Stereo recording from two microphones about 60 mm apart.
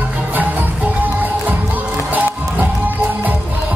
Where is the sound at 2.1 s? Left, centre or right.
Right.